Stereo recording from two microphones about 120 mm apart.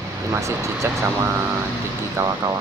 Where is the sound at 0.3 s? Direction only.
25° right (ahead or behind).